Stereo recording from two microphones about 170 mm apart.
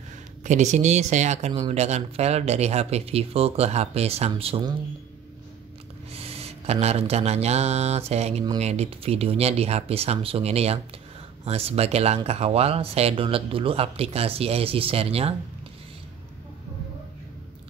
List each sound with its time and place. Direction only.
0.4 s speech: 45° right (ahead or behind)
6.1 s speech: 35° right (ahead or behind)